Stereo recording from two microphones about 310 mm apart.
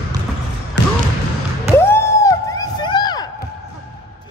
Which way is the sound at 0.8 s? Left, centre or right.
Left.